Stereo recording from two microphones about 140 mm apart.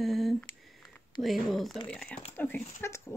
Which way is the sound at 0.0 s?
Centre (ahead or behind).